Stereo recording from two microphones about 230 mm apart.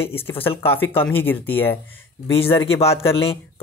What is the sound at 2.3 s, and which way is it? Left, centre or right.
Speech, left.